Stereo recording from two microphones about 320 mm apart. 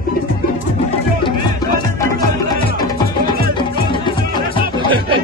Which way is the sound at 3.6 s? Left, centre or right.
Centre.